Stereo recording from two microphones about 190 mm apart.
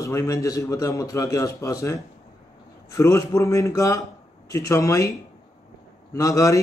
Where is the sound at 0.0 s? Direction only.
15° left (ahead or behind).